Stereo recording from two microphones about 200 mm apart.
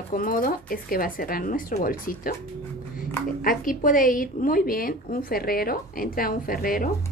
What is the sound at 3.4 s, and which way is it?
A woman's voice, 45° left (ahead or behind).